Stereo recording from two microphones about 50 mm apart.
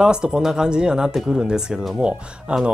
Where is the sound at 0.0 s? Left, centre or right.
Centre.